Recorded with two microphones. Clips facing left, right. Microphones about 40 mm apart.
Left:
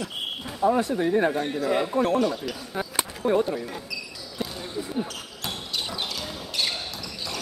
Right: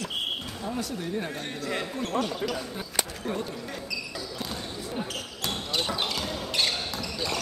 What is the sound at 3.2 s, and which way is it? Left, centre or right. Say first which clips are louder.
Speech: left 9 dB; left.